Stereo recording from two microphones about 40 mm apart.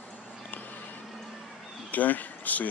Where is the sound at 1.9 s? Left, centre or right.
Left.